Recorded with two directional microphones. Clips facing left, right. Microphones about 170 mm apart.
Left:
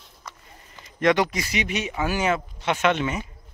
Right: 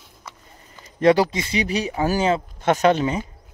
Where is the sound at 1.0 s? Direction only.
30° right (ahead or behind).